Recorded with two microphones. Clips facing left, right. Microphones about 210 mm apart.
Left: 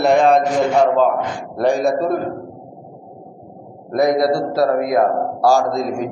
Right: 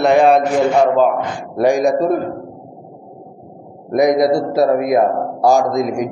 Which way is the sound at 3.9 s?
20° right (ahead or behind).